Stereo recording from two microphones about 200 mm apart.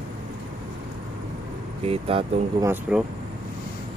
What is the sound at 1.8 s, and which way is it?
Speech, 30° right (ahead or behind).